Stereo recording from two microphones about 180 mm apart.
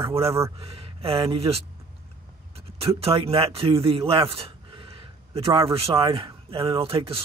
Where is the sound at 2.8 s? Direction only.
35° right (ahead or behind).